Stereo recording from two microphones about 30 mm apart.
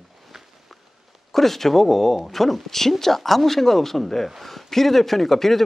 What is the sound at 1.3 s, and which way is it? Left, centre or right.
Speech, centre.